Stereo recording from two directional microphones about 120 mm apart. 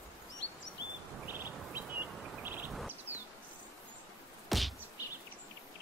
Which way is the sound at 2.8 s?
15° right (ahead or behind).